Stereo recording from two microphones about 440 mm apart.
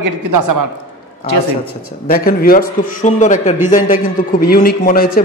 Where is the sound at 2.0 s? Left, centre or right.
Centre.